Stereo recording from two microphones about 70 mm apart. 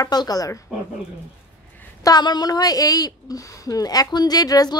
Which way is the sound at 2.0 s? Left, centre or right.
Left.